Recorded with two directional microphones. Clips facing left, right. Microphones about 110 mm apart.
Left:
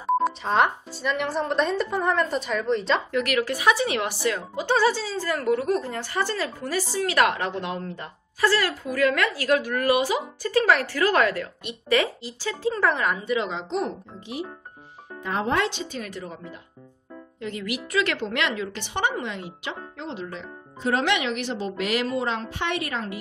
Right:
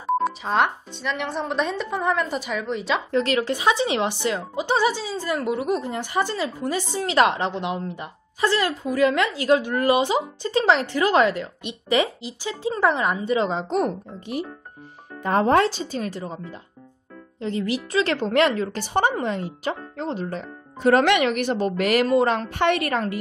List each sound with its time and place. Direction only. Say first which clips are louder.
0.1 s speech: even; centre (ahead or behind)
3.1 s a woman's voice: right 3 dB; 30° right (ahead or behind)
17.4 s speech: right 5 dB; 30° right (ahead or behind); by 23.0 s 55° right (ahead or behind)